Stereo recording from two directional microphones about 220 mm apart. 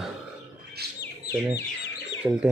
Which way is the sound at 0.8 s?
45° right (ahead or behind).